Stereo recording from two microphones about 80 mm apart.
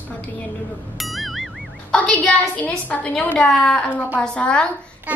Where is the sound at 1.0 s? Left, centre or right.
Centre.